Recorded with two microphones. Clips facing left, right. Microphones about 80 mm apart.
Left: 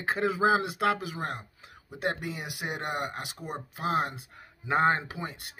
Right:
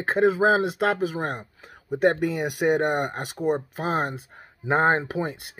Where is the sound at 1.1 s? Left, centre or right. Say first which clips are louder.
Right 6 dB; right.